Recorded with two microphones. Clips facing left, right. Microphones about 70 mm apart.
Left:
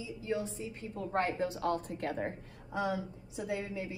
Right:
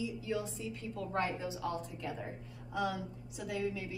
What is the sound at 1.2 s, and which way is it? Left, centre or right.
A woman's voice, left.